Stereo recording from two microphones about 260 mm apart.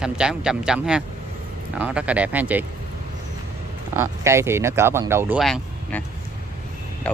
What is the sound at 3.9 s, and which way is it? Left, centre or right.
Speech, centre.